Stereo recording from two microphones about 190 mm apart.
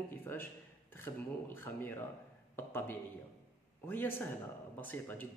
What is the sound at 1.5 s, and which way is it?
Speech, 10° left (ahead or behind).